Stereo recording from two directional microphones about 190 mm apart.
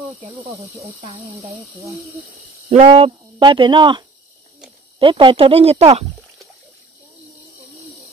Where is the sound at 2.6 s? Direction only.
30° right (ahead or behind).